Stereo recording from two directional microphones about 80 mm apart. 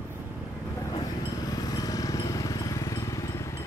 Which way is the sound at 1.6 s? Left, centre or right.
Left.